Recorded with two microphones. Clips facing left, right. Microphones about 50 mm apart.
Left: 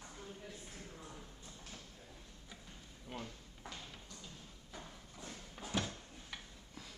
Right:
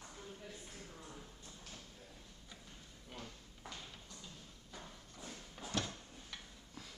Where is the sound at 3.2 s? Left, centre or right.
Centre.